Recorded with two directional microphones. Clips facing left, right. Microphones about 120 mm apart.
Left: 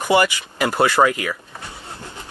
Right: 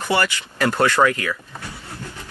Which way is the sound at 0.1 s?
15° left (ahead or behind).